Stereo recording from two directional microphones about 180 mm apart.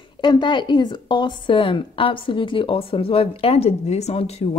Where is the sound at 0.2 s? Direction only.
25° left (ahead or behind).